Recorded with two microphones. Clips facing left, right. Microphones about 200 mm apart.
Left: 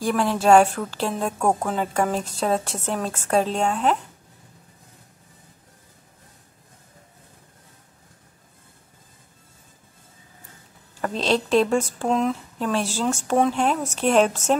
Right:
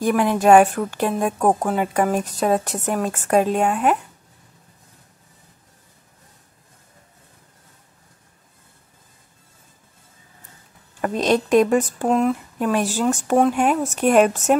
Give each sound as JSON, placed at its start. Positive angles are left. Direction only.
{"t": 0.0, "sound": "a woman's voice", "side_deg": -15}
{"t": 11.0, "sound": "a woman's voice", "side_deg": -15}
{"t": 12.1, "sound": "a woman's voice", "side_deg": -5}